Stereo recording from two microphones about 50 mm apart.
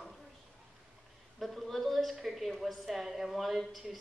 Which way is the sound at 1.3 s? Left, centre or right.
Centre.